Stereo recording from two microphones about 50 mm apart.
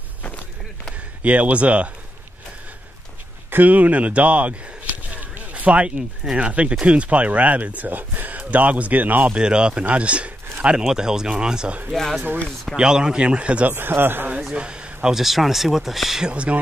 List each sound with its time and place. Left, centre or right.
1.2 s speech: right
3.4 s speech: right
9.3 s speech: centre
11.9 s speech: centre
12.7 s speech: centre
13.7 s a man's voice: right
14.5 s speech: centre
15.0 s speech: centre
16.3 s speech: right